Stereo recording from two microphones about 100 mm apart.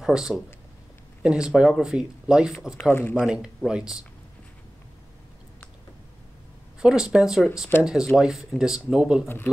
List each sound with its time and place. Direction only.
0.0 s speech: 5° right (ahead or behind)
2.9 s speech: 20° left (ahead or behind)
3.3 s speech: 10° right (ahead or behind)
6.8 s speech: 5° right (ahead or behind)